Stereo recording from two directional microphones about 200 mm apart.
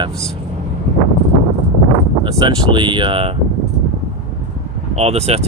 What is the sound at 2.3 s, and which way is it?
Speech, 25° right (ahead or behind).